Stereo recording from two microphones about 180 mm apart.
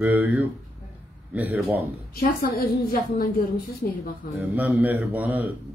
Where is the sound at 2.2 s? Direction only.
55° left (ahead or behind).